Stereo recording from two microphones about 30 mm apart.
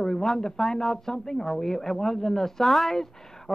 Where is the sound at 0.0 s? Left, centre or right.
Centre.